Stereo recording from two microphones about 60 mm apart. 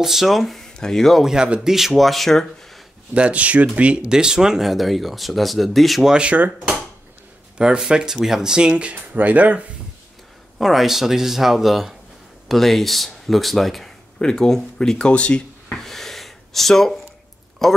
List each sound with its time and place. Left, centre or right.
0.0 s speech: centre
1.2 s speech: centre
3.2 s speech: right; by 6.1 s centre
6.1 s speech: centre
7.5 s speech: centre
8.9 s speech: right
10.6 s speech: centre
15.8 s a sound: centre
17.6 s speech: centre